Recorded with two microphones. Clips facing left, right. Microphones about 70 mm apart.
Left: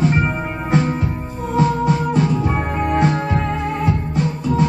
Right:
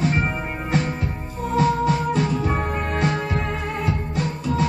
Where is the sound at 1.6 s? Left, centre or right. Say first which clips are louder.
Left 2 dB; left.